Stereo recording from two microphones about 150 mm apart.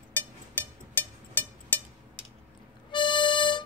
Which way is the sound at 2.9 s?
30° left (ahead or behind).